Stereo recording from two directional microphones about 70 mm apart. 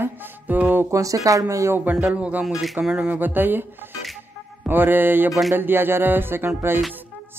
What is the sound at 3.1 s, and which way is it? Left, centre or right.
Speech, right.